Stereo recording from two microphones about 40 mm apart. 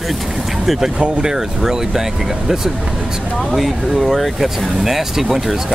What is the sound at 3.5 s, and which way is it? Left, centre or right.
Speech, centre.